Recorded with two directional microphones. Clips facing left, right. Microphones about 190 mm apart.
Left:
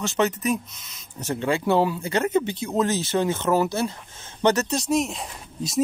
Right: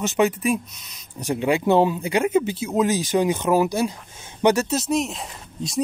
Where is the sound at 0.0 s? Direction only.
15° right (ahead or behind).